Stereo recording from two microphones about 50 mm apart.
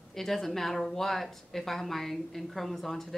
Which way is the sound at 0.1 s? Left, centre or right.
Centre.